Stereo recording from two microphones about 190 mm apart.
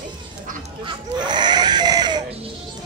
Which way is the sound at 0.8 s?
25° right (ahead or behind).